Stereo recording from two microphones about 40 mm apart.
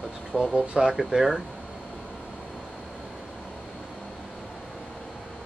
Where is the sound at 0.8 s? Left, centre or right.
Centre.